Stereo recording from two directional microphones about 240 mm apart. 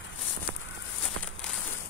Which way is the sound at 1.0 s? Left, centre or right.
Centre.